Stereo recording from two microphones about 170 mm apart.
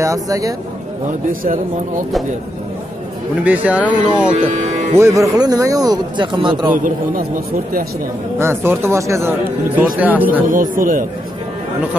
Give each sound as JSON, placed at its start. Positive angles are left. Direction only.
{"t": 0.0, "sound": "a man's voice", "side_deg": -20}
{"t": 1.4, "sound": "speech", "side_deg": -55}
{"t": 3.4, "sound": "a man's voice", "side_deg": -10}
{"t": 6.8, "sound": "a man's voice", "side_deg": -55}
{"t": 8.4, "sound": "speech", "side_deg": -15}
{"t": 10.5, "sound": "speech", "side_deg": -55}